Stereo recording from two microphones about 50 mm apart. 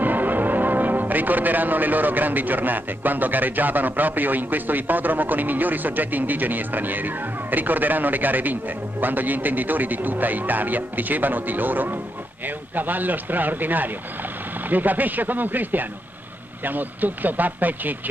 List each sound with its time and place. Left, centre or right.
0.0 s speech: right